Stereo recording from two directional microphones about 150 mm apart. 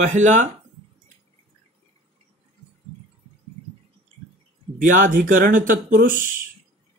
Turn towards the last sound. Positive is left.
turn(degrees=-65)  # may be behind; listen again after turning